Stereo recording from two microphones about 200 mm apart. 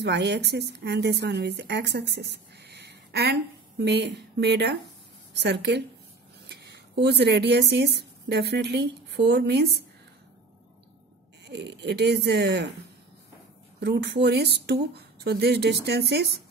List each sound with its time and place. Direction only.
0.0 s a woman's voice: 55° right (ahead or behind)
11.4 s speech: 60° right (ahead or behind)
13.7 s speech: 55° right (ahead or behind)